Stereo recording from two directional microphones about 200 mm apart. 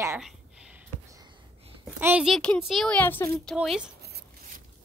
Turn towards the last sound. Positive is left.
turn(degrees=-5)  # may be behind; listen again after turning